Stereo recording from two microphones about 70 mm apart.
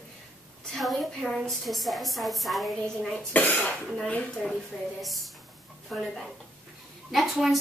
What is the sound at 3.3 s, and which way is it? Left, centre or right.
Speech, left.